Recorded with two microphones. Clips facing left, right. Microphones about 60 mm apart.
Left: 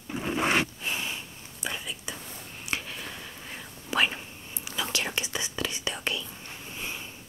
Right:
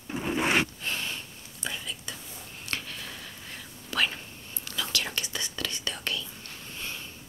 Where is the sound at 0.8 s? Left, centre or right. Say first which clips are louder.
Left 1 dB; centre.